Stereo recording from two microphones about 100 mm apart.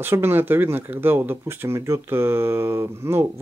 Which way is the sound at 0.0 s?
20° right (ahead or behind).